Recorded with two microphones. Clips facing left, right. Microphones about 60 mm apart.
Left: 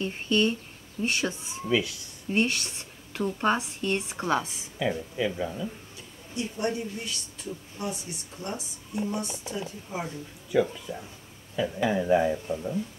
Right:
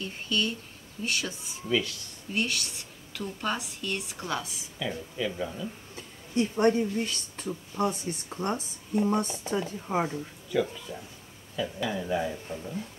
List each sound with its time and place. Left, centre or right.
0.0 s speech: left
1.7 s speech: centre
2.3 s speech: left
4.7 s speech: centre
6.3 s speech: right
10.5 s speech: centre
11.5 s speech: left